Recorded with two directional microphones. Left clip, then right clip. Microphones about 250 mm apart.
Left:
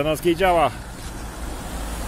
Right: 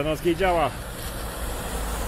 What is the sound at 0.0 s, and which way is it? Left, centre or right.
Speech, centre.